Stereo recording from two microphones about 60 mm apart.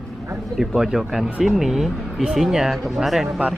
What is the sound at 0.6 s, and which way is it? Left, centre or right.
Speech, centre.